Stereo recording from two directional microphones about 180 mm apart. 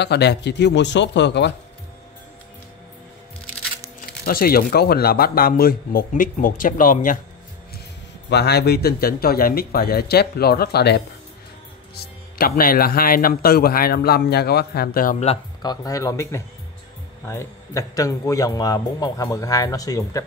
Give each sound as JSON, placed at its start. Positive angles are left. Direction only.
{"t": 0.0, "sound": "speech", "side_deg": 65}
{"t": 4.2, "sound": "speech", "side_deg": 55}
{"t": 8.3, "sound": "speech", "side_deg": 65}
{"t": 15.6, "sound": "a man's voice", "side_deg": 20}